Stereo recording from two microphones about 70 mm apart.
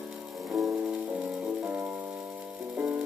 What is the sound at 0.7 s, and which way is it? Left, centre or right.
Music, centre.